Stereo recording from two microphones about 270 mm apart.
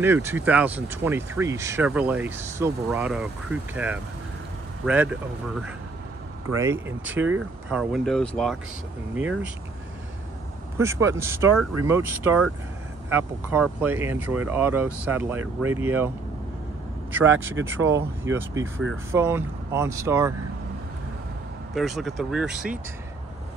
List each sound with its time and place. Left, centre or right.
0.0 s speech: centre
11.1 s speech: centre
17.6 s speech: right
18.2 s speech: centre
21.7 s speech: centre